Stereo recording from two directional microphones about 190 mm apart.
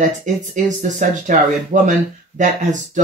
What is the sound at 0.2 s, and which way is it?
Speech, 40° right (ahead or behind).